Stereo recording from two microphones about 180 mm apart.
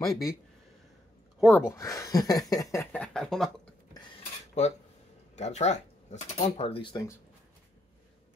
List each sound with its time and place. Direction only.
0.1 s speech: 20° left (ahead or behind)
1.4 s speech: centre (ahead or behind)
1.7 s speech: 15° left (ahead or behind)
5.3 s speech: 40° left (ahead or behind)